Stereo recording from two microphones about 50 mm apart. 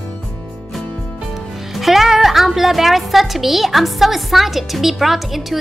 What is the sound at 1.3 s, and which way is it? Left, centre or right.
A woman's voice, centre.